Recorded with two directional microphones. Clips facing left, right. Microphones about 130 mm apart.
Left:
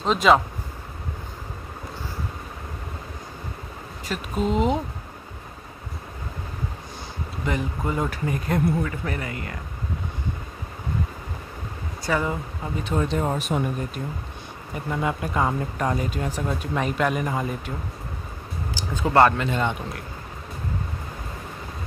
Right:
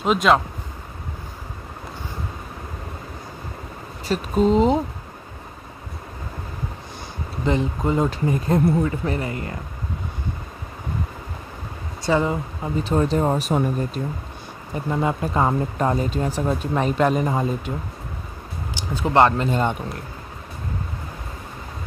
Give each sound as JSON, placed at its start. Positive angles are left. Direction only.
{"t": 0.0, "sound": "speech", "side_deg": -5}
{"t": 4.1, "sound": "speech", "side_deg": -35}
{"t": 7.4, "sound": "speech", "side_deg": -25}
{"t": 12.0, "sound": "speech", "side_deg": -25}
{"t": 12.8, "sound": "speech", "side_deg": -35}
{"t": 19.0, "sound": "speech", "side_deg": -20}
{"t": 19.3, "sound": "speech", "side_deg": -40}